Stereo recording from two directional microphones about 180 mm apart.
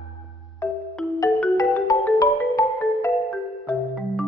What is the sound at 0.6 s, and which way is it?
Music, 5° left (ahead or behind).